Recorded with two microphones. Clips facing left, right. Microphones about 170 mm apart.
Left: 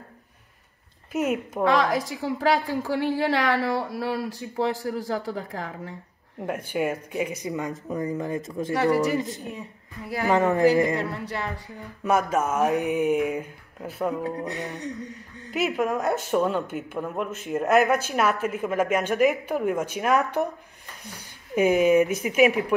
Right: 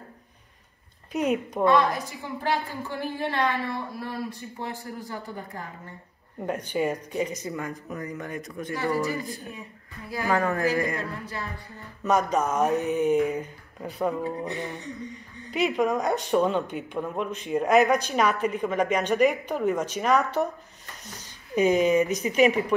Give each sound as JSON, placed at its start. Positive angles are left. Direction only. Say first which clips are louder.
{"t": 1.1, "sound": "a woman's voice", "louder": "even", "side_deg": 5}
{"t": 1.6, "sound": "a woman's voice", "louder": "even", "side_deg": 90}
{"t": 4.6, "sound": "a woman's voice", "louder": "left 11 dB", "side_deg": 90}
{"t": 6.4, "sound": "speech", "louder": "even", "side_deg": 5}
{"t": 11.1, "sound": "speech", "louder": "left 4 dB", "side_deg": 70}
{"t": 12.0, "sound": "a sound", "louder": "even", "side_deg": 5}
{"t": 15.5, "sound": "a woman's voice", "louder": "right 1 dB", "side_deg": 5}